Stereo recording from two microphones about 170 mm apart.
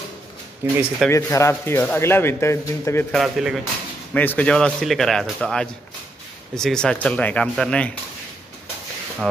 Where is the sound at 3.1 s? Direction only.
Centre (ahead or behind).